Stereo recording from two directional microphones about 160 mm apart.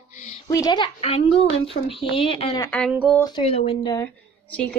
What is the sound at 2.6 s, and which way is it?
Speech, 10° left (ahead or behind).